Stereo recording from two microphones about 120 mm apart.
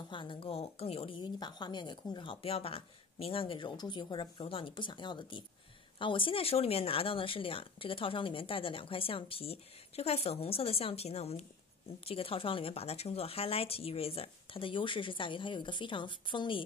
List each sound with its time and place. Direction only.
0.1 s speech: 40° left (ahead or behind)
2.4 s speech: 55° left (ahead or behind)